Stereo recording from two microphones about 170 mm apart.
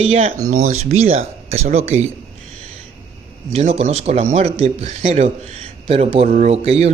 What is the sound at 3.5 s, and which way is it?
Speech, 40° right (ahead or behind).